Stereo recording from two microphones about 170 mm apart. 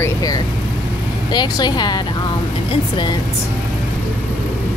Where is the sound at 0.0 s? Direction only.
20° left (ahead or behind).